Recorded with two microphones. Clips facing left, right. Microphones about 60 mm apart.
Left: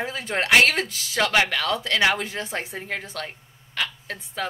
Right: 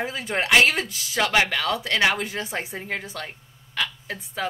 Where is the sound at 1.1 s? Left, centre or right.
Centre.